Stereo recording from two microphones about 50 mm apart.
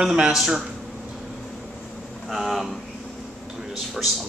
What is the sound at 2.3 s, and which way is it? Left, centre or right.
Speech, centre.